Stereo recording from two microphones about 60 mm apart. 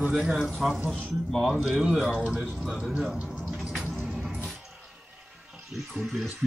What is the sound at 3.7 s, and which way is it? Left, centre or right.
Music, centre.